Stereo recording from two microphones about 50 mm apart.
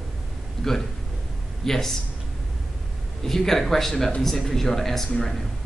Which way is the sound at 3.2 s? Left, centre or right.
Centre.